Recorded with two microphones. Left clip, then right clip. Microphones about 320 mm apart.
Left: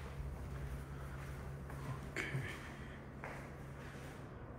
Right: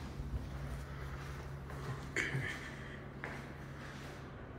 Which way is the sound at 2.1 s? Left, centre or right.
Centre.